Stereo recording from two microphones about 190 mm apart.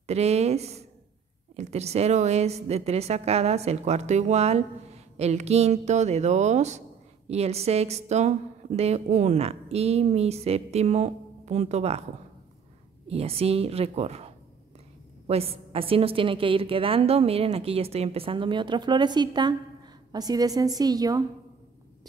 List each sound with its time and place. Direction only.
0.0 s a woman's voice: 35° right (ahead or behind)
13.1 s a woman's voice: 30° right (ahead or behind)